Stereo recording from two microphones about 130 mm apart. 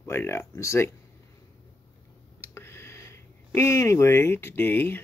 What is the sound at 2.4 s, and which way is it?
Speech, 20° left (ahead or behind).